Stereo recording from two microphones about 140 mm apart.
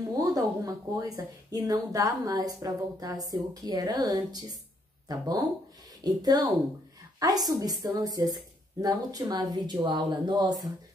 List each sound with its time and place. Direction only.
0.2 s speech: 25° right (ahead or behind)